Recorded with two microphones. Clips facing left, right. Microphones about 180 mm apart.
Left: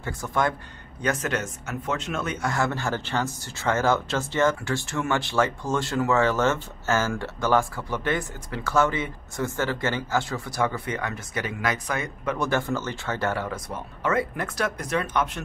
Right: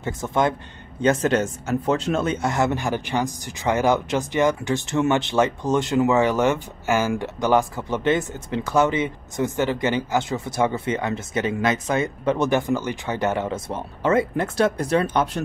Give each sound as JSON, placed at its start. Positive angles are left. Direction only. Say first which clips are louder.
{"t": 0.0, "sound": "speech", "louder": "right 4 dB", "side_deg": -20}